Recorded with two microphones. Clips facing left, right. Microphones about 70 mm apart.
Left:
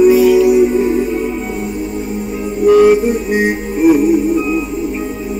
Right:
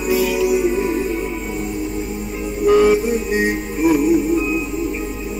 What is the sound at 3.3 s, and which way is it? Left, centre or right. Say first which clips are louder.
Music: left 4 dB; left.